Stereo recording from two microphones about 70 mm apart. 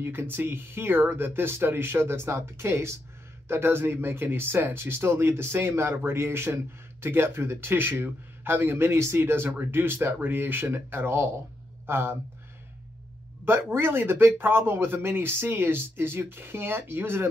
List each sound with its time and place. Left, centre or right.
0.0 s speech: right
13.5 s speech: right